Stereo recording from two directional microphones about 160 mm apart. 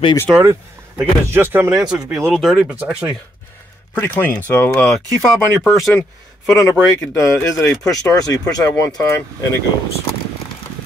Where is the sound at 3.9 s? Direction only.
10° left (ahead or behind).